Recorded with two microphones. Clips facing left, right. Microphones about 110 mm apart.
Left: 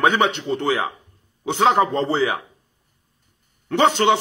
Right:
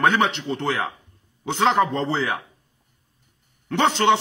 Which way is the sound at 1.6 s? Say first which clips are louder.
Left 2 dB; 10° left (ahead or behind).